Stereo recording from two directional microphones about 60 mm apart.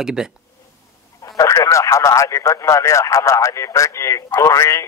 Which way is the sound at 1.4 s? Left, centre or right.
Left.